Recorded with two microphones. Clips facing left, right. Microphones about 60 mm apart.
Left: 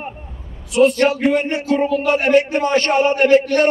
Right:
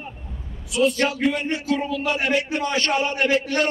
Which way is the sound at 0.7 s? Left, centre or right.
Left.